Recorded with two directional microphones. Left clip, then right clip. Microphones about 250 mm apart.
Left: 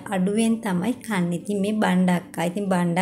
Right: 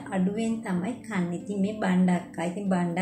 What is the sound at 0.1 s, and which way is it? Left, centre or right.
A woman's voice, left.